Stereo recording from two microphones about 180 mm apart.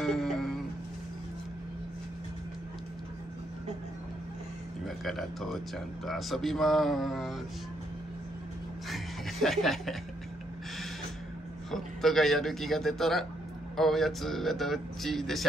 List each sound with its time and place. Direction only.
0.0 s a sound: centre (ahead or behind)
4.8 s speech: centre (ahead or behind)
8.8 s music: centre (ahead or behind)
11.7 s speech: centre (ahead or behind)